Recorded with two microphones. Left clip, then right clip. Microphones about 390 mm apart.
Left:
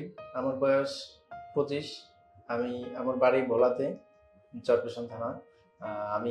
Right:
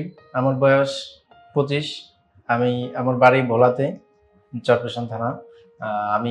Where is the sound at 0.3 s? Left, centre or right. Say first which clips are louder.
Right 10 dB; right.